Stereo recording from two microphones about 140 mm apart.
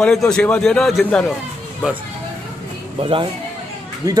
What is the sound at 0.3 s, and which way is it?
A man's voice, 5° left (ahead or behind).